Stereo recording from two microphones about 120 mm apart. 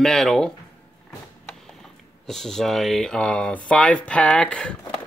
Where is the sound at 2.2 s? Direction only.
5° left (ahead or behind).